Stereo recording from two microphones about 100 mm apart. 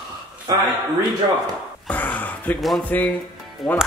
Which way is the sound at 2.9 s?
10° left (ahead or behind).